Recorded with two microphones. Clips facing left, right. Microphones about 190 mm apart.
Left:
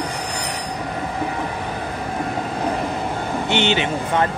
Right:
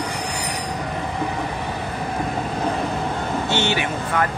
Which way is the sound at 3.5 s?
20° left (ahead or behind).